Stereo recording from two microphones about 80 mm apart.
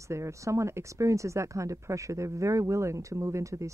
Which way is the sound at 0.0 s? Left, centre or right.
Right.